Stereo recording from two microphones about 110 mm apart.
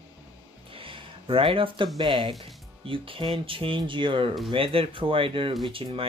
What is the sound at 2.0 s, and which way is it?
Speech, 50° right (ahead or behind).